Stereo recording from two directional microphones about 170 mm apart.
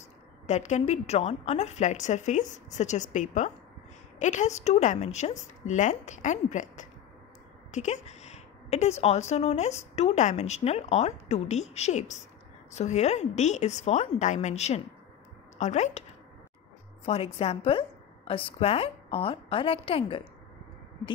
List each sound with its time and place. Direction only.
0.5 s a woman's voice: 45° left (ahead or behind)
17.0 s a woman's voice: 35° left (ahead or behind)